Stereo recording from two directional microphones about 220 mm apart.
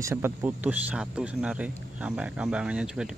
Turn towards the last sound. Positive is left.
turn(degrees=-5)  # may be behind; listen again after turning